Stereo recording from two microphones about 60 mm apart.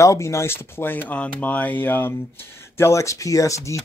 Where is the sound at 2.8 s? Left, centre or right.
Left.